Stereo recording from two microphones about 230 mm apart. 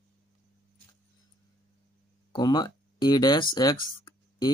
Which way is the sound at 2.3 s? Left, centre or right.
Centre.